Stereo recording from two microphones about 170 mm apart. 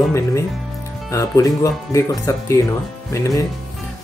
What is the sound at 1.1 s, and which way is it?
Speech, 20° left (ahead or behind).